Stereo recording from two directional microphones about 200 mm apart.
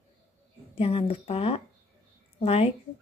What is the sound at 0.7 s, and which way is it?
Speech, 30° left (ahead or behind).